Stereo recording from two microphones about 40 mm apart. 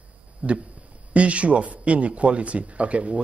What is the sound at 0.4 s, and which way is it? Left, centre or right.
Speech, right.